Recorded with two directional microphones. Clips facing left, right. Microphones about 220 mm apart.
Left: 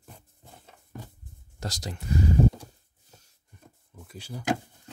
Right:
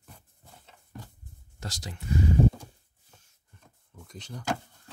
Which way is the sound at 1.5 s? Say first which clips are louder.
Left 4 dB; 40° left (ahead or behind).